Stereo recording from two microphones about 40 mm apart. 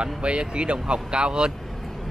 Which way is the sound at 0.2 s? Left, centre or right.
Right.